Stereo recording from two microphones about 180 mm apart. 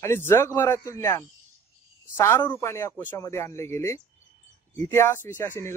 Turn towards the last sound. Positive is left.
turn(degrees=10)  # may be behind; listen again after turning